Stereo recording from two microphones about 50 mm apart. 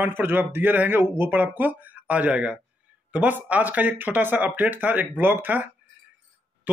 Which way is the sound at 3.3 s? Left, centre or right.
Right.